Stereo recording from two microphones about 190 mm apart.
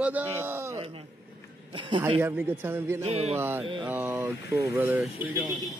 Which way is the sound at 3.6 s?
25° right (ahead or behind).